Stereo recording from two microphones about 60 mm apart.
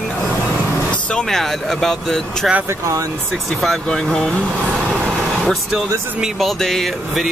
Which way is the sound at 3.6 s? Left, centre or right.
Centre.